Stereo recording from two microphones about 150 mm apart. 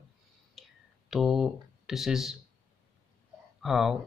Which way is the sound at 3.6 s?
Centre (ahead or behind).